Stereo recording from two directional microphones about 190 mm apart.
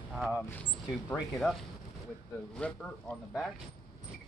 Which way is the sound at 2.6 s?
5° left (ahead or behind).